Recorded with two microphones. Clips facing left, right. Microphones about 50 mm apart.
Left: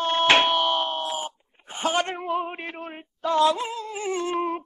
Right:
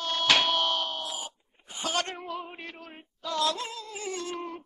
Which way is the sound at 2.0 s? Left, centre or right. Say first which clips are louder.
Left 4 dB; left.